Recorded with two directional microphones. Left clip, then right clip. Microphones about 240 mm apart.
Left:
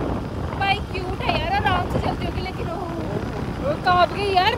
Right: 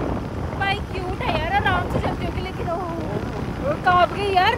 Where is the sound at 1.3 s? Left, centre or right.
Centre.